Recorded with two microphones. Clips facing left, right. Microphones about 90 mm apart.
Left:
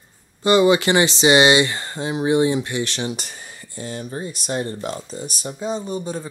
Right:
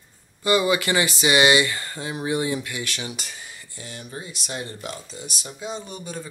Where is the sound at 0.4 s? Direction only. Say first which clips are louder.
Left 6 dB; 25° left (ahead or behind).